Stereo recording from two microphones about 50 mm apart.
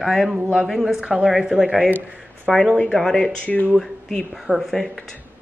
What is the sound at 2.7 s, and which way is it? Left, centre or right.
Speech, left.